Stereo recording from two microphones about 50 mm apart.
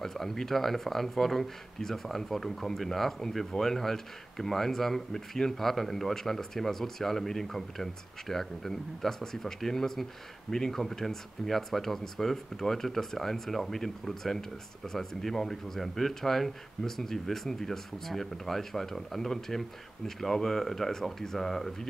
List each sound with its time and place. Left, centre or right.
0.0 s speech: centre